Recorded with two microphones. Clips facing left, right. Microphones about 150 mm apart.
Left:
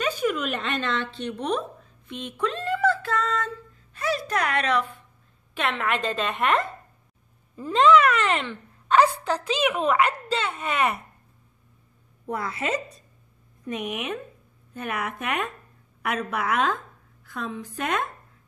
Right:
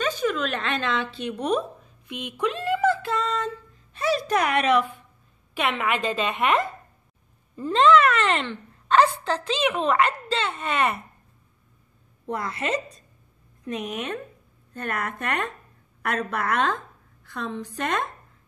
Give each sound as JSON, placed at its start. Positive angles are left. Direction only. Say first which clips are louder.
{"t": 0.0, "sound": "a woman's voice", "louder": "even", "side_deg": 10}
{"t": 2.0, "sound": "female singing", "louder": "right 1 dB", "side_deg": -15}
{"t": 3.9, "sound": "speech", "louder": "right 3 dB", "side_deg": -20}
{"t": 12.3, "sound": "a woman's voice", "louder": "even", "side_deg": 5}